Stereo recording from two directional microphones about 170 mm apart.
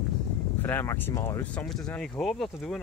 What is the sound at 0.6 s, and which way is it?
Speech, 15° left (ahead or behind).